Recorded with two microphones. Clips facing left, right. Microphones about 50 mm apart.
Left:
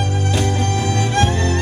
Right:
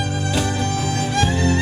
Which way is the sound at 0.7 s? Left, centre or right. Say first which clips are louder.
Left 3 dB; left.